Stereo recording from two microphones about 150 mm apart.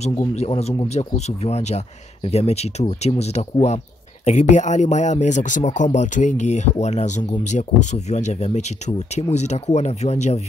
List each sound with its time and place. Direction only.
0.3 s speech: 45° left (ahead or behind)